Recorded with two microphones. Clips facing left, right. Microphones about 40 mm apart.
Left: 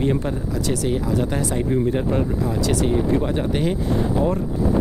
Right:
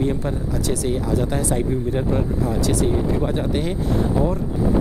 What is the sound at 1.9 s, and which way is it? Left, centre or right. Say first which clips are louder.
Speech: left 1 dB; centre.